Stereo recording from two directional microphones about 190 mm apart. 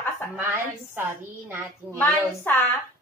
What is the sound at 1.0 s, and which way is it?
Speech, 10° right (ahead or behind).